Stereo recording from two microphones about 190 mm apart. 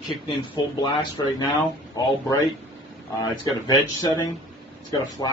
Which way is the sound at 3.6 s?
20° left (ahead or behind).